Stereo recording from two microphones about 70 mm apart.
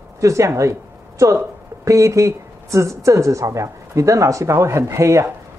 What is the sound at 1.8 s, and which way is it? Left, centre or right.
Speech, right.